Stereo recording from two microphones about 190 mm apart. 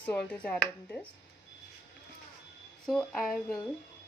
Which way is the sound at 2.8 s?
5° left (ahead or behind).